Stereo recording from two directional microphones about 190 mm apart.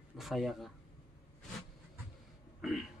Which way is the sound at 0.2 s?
Centre (ahead or behind).